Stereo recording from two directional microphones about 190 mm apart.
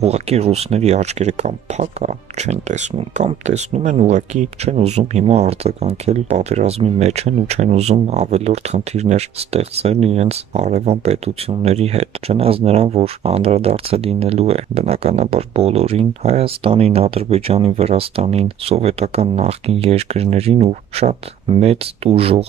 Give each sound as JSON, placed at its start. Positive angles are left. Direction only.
{"t": 0.0, "sound": "speech", "side_deg": -35}